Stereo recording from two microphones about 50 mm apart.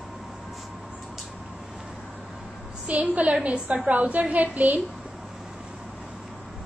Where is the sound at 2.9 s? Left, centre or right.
Right.